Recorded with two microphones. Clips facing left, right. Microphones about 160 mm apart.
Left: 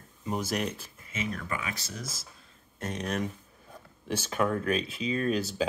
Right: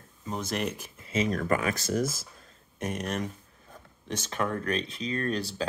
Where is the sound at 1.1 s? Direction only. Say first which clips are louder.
Right 8 dB; 40° right (ahead or behind).